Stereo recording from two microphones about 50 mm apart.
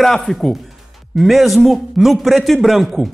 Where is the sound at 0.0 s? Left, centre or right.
Centre.